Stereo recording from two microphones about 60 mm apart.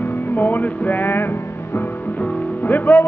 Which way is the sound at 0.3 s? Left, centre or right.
Left.